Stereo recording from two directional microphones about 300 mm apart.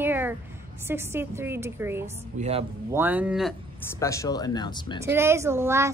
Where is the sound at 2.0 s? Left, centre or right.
Right.